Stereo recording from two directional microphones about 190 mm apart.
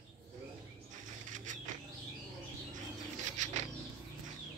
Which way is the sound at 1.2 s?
40° right (ahead or behind).